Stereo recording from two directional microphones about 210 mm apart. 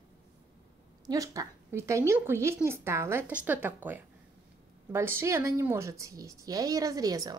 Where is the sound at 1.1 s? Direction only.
15° right (ahead or behind).